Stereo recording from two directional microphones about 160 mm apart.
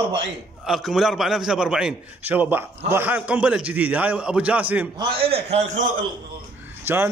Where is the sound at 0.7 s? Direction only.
Centre (ahead or behind).